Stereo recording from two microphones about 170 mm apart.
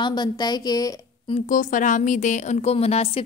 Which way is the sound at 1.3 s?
50° left (ahead or behind).